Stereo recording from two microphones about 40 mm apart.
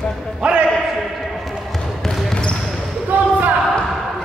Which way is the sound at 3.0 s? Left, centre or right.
Right.